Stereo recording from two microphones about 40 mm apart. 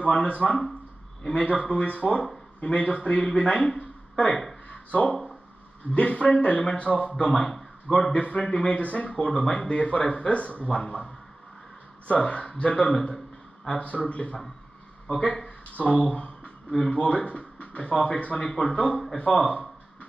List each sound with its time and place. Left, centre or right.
0.0 s speech: left
4.6 s a sound: left
5.9 s speech: left
7.2 s speech: centre
8.1 s speech: left
8.4 s speech: centre
8.6 s speech: left
12.2 s speech: left
18.4 s speech: centre
19.1 s speech: left